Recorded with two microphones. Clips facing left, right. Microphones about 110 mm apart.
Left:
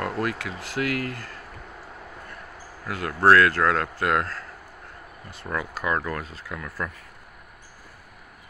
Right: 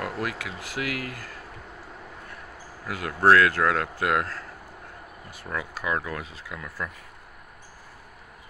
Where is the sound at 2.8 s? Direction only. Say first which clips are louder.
Left 1 dB; 10° right (ahead or behind).